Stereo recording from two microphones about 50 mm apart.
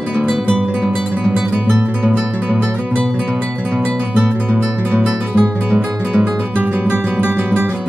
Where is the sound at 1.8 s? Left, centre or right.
Right.